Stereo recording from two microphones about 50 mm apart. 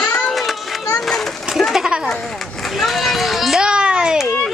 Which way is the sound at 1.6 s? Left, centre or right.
Centre.